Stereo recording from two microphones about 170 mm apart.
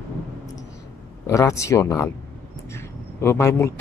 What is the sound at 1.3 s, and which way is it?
Speech, 20° left (ahead or behind).